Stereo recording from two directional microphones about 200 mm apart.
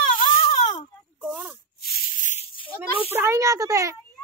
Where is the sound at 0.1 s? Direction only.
40° left (ahead or behind).